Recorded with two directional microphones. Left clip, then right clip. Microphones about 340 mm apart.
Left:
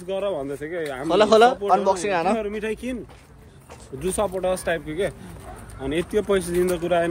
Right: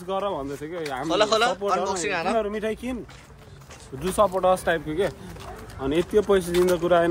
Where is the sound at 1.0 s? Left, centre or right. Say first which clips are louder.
Left 6 dB; centre.